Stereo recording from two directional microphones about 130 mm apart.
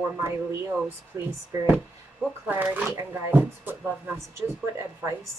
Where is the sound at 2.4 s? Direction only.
15° right (ahead or behind).